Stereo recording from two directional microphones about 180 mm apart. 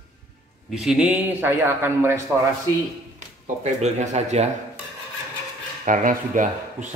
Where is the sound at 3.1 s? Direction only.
40° right (ahead or behind).